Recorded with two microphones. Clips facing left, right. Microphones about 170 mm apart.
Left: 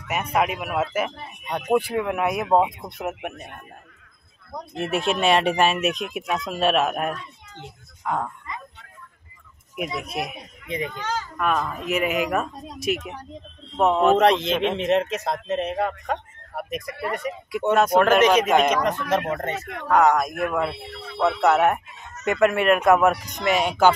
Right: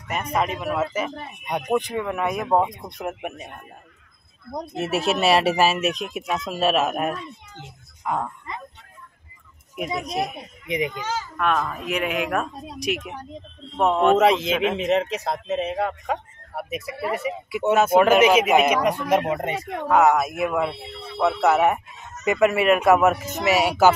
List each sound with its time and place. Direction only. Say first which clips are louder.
0.1 s speech: left 1 dB; 10° left (ahead or behind)
4.7 s speech: right 1 dB; 5° right (ahead or behind)
10.7 s a child's voice: right 3 dB; 15° right (ahead or behind)
11.1 s speech: right 1 dB; centre (ahead or behind)